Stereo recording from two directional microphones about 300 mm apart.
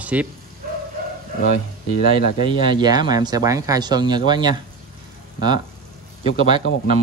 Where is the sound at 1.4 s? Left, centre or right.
Left.